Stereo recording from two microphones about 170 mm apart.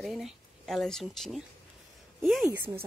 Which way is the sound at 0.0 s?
Centre (ahead or behind).